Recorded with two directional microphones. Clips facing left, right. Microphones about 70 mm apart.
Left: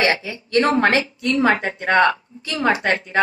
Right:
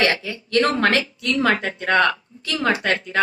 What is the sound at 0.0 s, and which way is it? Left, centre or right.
A woman's voice, left.